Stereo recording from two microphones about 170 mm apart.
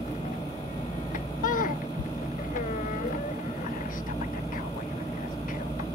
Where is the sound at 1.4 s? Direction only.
50° left (ahead or behind).